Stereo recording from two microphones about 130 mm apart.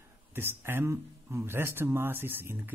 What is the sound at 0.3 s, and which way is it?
Speech, 15° right (ahead or behind).